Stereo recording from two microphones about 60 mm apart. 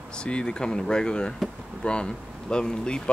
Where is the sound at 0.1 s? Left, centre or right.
Centre.